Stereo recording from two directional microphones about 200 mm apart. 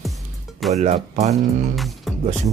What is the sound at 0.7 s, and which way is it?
Speech, 35° right (ahead or behind).